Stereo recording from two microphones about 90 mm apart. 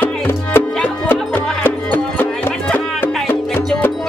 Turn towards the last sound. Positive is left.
turn(degrees=25)  # may be behind; listen again after turning